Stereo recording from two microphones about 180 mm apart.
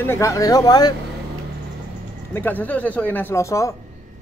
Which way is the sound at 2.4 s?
10° left (ahead or behind).